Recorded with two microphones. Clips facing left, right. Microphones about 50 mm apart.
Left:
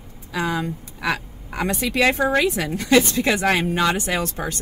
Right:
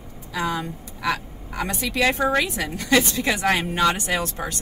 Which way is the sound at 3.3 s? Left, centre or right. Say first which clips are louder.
Left 1 dB; left.